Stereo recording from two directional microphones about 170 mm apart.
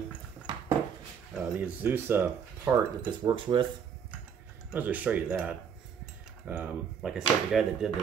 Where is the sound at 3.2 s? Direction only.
30° right (ahead or behind).